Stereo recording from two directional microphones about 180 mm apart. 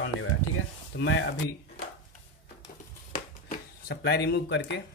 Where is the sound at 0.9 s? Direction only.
90° left.